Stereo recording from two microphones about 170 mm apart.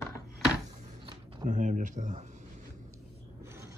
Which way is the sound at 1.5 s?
50° right (ahead or behind).